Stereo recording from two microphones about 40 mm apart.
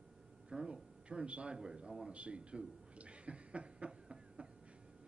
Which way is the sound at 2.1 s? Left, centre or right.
Right.